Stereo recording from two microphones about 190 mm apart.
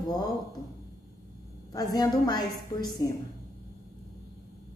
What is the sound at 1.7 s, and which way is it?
A woman's voice, 20° left (ahead or behind).